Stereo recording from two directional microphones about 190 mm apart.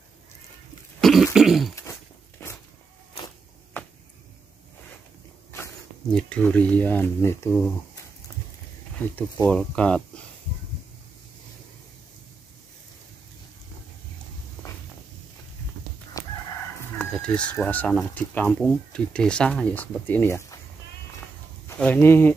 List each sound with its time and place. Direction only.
1.0 s a sound: centre (ahead or behind)
2.4 s a sound: 15° left (ahead or behind)
6.1 s speech: 5° left (ahead or behind)
9.0 s speech: 10° left (ahead or behind)
16.1 s chicken: 20° left (ahead or behind)
17.0 s speech: 5° left (ahead or behind)
21.7 s speech: 10° left (ahead or behind)